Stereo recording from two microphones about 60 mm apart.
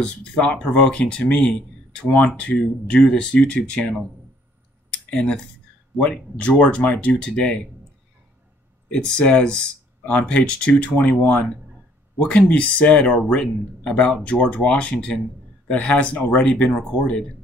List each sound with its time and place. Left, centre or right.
0.0 s speech: centre
5.1 s speech: centre
8.9 s speech: centre